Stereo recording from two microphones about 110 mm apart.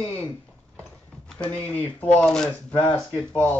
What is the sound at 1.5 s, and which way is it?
Speech, 25° right (ahead or behind).